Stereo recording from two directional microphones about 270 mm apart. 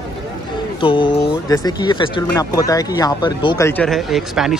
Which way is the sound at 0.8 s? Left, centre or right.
Centre.